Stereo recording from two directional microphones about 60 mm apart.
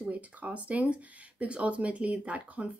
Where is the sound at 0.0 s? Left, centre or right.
Right.